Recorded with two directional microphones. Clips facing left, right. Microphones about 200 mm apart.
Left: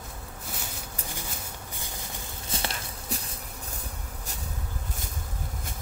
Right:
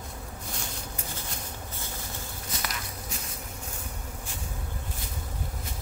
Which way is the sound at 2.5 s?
30° left (ahead or behind).